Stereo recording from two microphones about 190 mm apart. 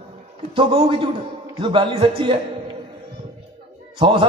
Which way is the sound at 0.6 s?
30° right (ahead or behind).